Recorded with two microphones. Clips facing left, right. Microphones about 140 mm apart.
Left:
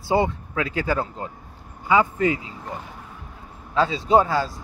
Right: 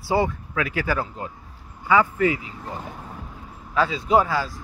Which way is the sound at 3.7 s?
30° left (ahead or behind).